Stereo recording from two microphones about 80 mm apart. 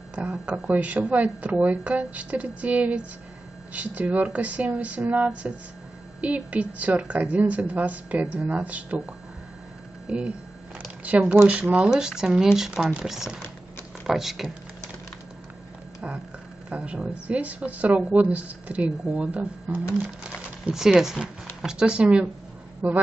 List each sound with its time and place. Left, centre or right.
0.1 s a woman's voice: centre
10.0 s a woman's voice: centre
16.6 s a woman's voice: centre